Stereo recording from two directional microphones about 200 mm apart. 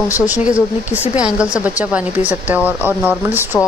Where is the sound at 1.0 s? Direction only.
5° right (ahead or behind).